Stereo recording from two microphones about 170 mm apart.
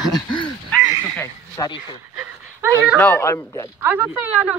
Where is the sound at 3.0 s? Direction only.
15° left (ahead or behind).